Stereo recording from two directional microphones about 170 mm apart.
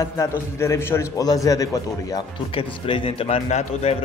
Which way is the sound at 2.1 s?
30° left (ahead or behind).